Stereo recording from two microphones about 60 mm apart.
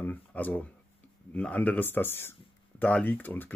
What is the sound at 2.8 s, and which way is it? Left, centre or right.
Speech, left.